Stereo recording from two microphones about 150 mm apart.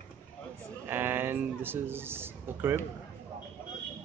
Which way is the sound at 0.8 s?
15° right (ahead or behind).